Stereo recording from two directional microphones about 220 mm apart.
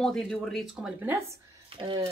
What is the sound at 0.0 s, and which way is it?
Speech, 5° left (ahead or behind).